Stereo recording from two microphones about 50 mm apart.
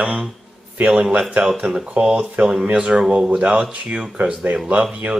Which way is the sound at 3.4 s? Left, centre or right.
Right.